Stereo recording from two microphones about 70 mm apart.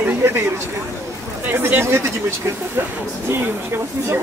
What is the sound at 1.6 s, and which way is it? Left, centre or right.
Speech, right.